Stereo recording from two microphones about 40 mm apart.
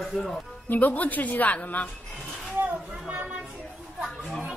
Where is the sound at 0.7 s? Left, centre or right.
Left.